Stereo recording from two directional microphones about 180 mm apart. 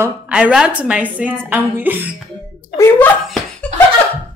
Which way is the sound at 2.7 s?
15° left (ahead or behind).